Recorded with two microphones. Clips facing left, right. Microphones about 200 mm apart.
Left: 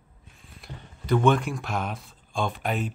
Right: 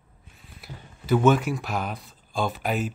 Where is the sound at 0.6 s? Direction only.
5° right (ahead or behind).